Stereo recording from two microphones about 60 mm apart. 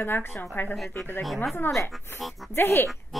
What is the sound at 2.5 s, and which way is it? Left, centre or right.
Speech, left.